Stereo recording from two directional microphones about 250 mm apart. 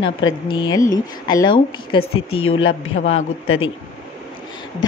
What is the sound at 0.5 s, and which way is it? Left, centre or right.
Speech, centre.